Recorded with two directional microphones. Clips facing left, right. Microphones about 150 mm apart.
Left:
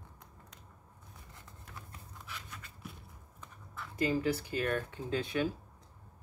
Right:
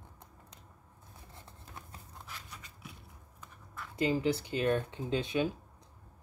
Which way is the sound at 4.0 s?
20° right (ahead or behind).